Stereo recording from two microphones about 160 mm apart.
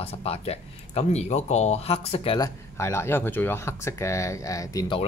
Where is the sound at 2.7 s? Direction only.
15° left (ahead or behind).